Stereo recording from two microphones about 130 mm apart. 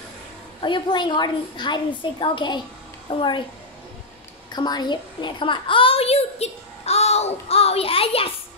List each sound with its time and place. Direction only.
0.6 s a woman's voice: 40° left (ahead or behind)
4.5 s a child's voice: 30° left (ahead or behind); by 8.3 s 45° left (ahead or behind)